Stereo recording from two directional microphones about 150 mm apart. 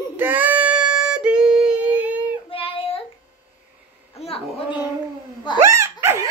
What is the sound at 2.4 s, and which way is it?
Child singing, 35° left (ahead or behind).